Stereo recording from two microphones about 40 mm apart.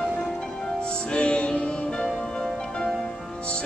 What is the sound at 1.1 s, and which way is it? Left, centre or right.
Music, left.